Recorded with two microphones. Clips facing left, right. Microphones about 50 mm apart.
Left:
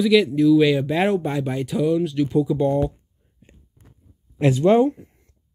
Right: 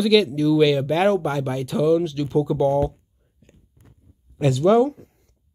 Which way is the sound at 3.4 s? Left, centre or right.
Centre.